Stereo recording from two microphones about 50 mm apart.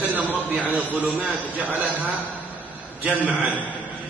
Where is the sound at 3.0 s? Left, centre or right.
Right.